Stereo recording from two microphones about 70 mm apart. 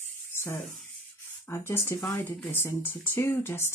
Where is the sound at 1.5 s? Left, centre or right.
Left.